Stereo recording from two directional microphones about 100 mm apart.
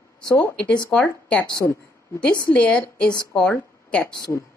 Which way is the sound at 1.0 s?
10° left (ahead or behind).